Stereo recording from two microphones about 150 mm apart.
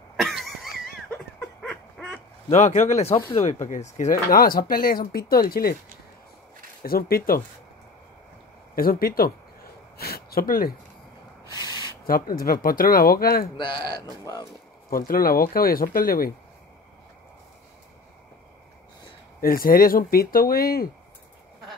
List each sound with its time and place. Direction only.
0.2 s a sound: centre (ahead or behind)
2.5 s speech: 50° left (ahead or behind); by 5.8 s 80° left
6.8 s speech: 85° left
8.7 s a sound: 80° left
11.5 s a sound: 25° left (ahead or behind)
12.1 s speech: 75° left (ahead or behind)
13.6 s speech: 30° left (ahead or behind)
14.9 s speech: 75° left (ahead or behind)
19.4 s speech: 75° left (ahead or behind)